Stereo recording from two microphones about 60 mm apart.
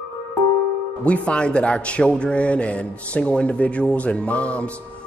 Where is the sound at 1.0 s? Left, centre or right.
Left.